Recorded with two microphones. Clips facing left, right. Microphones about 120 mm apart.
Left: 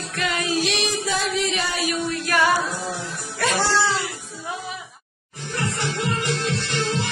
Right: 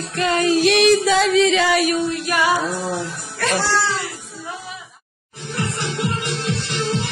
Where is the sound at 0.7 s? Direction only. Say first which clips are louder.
Right 10 dB; 65° right (ahead or behind); by 1.9 s 90° right.